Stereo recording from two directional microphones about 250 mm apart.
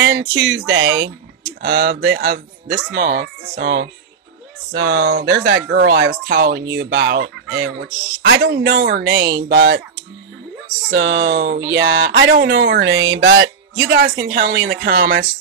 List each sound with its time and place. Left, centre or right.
0.0 s speech: right
10.9 s speech: right